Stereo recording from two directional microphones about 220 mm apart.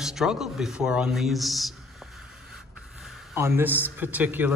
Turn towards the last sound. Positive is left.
turn(degrees=-10)  # may be behind; listen again after turning